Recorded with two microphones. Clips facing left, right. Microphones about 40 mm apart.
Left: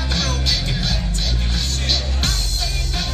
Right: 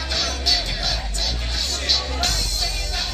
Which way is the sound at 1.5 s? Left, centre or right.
Left.